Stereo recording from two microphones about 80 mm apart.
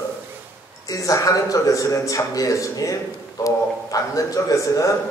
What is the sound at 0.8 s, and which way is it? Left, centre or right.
A man's voice, left.